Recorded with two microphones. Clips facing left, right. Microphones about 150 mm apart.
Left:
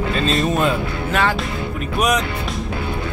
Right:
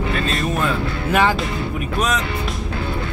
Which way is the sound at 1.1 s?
15° right (ahead or behind).